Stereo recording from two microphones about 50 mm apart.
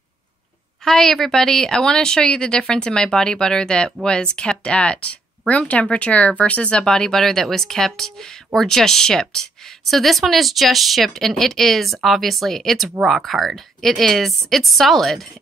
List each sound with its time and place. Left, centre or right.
0.8 s a woman's voice: centre